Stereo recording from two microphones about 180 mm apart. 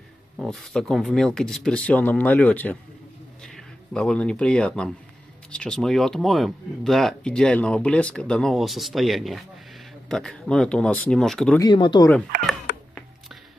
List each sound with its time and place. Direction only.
0.4 s speech: 5° left (ahead or behind)
11.6 s speech: 25° left (ahead or behind)
12.7 s cat: 65° left (ahead or behind)